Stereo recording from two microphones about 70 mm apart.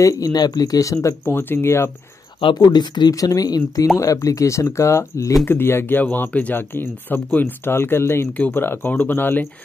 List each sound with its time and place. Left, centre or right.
0.0 s speech: left
1.2 s speech: left
2.6 s speech: left
3.8 s speech: left
5.4 s speech: left
8.3 s speech: left